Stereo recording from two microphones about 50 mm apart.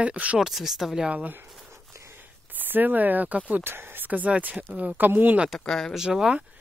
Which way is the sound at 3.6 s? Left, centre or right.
Right.